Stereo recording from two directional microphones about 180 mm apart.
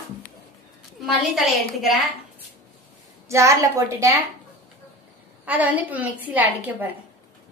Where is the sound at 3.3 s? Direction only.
15° right (ahead or behind).